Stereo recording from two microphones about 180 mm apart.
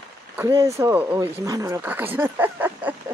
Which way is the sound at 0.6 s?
15° right (ahead or behind).